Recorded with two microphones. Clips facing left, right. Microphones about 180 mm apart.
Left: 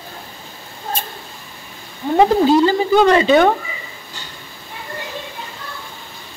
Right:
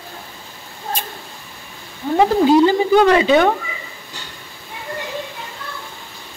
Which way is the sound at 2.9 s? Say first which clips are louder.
Left 1 dB; 5° right (ahead or behind).